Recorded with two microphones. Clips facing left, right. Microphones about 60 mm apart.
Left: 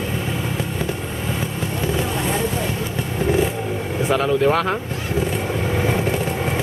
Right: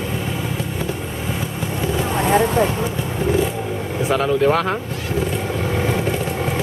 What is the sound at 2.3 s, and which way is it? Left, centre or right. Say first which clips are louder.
Vehicle: right 7 dB; right.